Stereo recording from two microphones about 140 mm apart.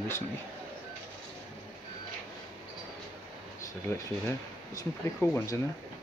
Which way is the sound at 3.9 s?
20° left (ahead or behind).